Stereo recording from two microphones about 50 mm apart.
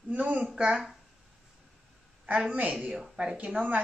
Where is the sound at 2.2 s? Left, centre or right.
Right.